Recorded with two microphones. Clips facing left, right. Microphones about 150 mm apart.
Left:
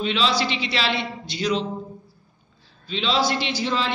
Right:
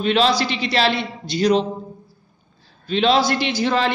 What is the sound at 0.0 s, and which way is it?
A man's voice, 50° right (ahead or behind).